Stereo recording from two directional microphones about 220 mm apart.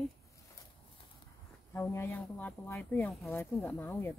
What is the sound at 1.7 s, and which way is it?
Speech, 10° left (ahead or behind).